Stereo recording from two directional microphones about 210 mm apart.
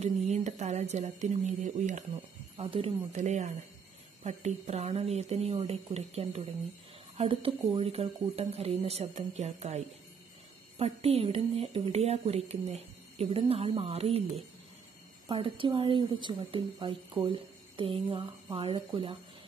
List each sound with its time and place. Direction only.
0.0 s a woman's voice: 35° right (ahead or behind)
15.2 s a woman's voice: 25° right (ahead or behind)